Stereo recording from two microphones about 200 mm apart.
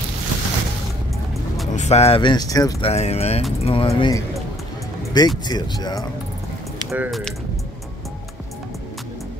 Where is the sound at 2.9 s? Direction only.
30° left (ahead or behind).